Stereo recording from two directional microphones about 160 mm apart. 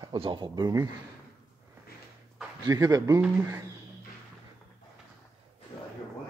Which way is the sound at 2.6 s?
20° right (ahead or behind).